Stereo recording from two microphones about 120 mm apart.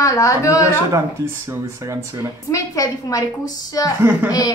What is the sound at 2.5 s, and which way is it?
A child's voice, 30° left (ahead or behind).